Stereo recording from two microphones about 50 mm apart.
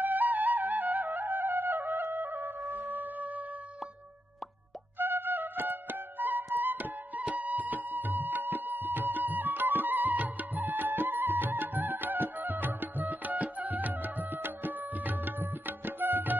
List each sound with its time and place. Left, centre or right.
0.0 s music: right
4.9 s music: right